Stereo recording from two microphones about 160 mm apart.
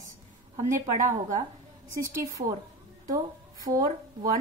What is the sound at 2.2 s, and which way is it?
Speech, 20° right (ahead or behind).